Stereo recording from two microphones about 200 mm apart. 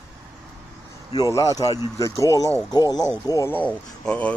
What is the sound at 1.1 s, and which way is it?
A man's voice, 15° left (ahead or behind).